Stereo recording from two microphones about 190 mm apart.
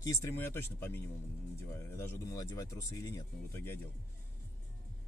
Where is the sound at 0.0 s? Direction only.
15° left (ahead or behind).